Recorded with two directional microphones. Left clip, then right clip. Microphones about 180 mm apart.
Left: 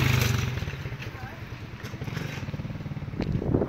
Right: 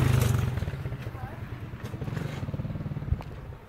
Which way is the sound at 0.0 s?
45° left (ahead or behind).